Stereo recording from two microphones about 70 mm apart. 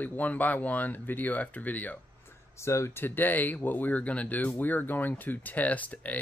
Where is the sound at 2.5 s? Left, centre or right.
Left.